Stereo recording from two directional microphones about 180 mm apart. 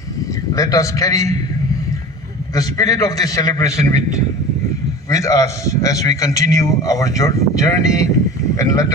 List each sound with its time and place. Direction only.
0.6 s a man's voice: 20° left (ahead or behind)
2.5 s a man's voice: 20° left (ahead or behind)